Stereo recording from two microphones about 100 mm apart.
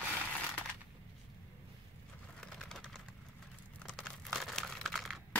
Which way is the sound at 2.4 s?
5° left (ahead or behind).